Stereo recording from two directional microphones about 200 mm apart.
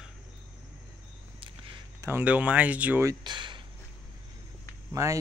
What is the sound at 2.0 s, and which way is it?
Speech, 10° right (ahead or behind).